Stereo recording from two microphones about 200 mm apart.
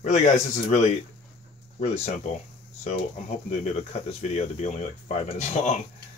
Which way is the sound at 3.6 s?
35° left (ahead or behind).